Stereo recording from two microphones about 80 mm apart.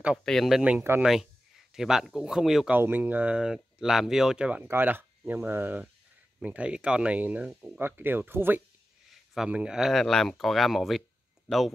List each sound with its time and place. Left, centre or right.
0.2 s speech: centre
0.5 s speech: centre
2.8 s speech: right
4.6 s speech: right
9.5 s speech: centre